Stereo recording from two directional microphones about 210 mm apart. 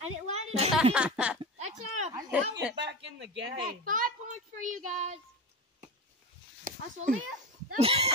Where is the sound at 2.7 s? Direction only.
60° right (ahead or behind).